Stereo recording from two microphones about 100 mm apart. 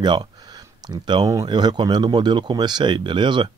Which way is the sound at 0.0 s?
50° right (ahead or behind).